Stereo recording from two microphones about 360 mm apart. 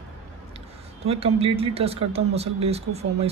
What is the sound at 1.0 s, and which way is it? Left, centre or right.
Speech, centre.